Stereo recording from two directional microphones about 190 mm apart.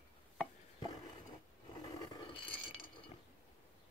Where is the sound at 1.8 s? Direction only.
20° left (ahead or behind).